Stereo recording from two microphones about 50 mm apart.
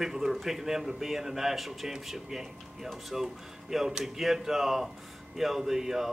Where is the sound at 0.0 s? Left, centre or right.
Centre.